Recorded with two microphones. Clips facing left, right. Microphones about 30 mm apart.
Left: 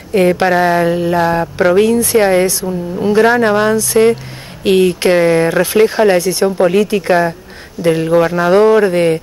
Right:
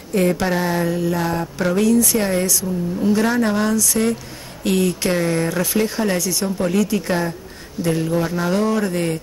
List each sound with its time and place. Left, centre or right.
0.1 s speech: left